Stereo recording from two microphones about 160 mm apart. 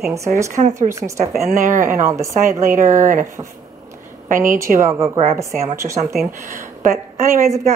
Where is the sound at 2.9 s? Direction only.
55° right (ahead or behind).